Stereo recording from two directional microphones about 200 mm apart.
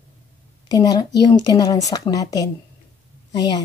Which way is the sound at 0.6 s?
20° left (ahead or behind).